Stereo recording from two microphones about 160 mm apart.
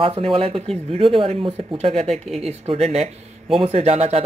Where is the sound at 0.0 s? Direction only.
35° right (ahead or behind).